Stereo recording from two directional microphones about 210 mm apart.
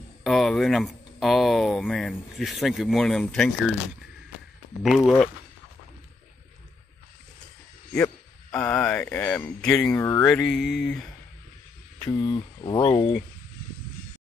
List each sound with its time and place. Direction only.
0.2 s speech: centre (ahead or behind)
4.8 s speech: centre (ahead or behind)
8.5 s speech: 5° left (ahead or behind)
12.0 s speech: 20° left (ahead or behind)